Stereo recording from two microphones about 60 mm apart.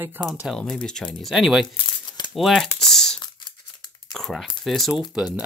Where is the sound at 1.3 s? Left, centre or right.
Centre.